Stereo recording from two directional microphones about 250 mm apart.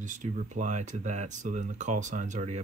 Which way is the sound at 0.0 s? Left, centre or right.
Right.